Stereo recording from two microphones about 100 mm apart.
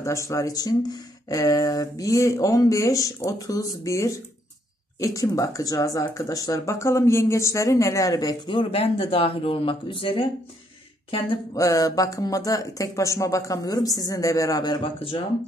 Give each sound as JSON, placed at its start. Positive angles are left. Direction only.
{"t": 0.0, "sound": "speech", "side_deg": 30}
{"t": 8.5, "sound": "speech", "side_deg": 65}
{"t": 11.5, "sound": "speech", "side_deg": 35}
{"t": 14.8, "sound": "speech", "side_deg": 65}